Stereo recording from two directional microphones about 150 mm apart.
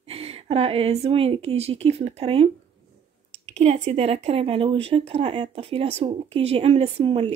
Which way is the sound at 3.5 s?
45° right (ahead or behind).